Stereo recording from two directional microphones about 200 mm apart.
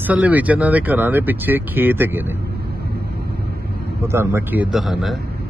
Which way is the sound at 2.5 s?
55° right (ahead or behind).